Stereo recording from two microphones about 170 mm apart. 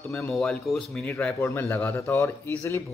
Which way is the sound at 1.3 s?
15° left (ahead or behind).